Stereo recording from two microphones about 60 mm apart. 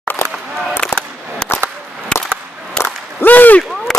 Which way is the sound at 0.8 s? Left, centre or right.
Centre.